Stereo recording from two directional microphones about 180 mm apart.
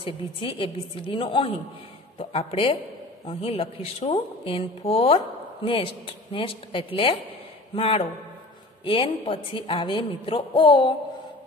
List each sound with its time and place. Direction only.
0.0 s speech: 30° left (ahead or behind)